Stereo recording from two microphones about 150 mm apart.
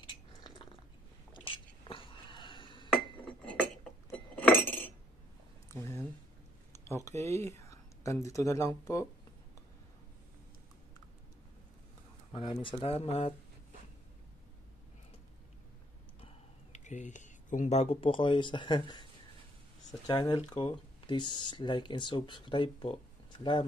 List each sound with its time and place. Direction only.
1.3 s chewing: 35° left (ahead or behind)
2.9 s glass: 5° left (ahead or behind)
5.7 s a sound: 15° left (ahead or behind)
6.7 s speech: 20° left (ahead or behind)
12.3 s speech: 35° left (ahead or behind)
16.7 s speech: 55° left (ahead or behind); by 19.0 s 30° left (ahead or behind)
20.1 s speech: 30° left (ahead or behind)